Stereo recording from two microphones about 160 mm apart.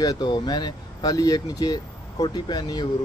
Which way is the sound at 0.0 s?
25° left (ahead or behind).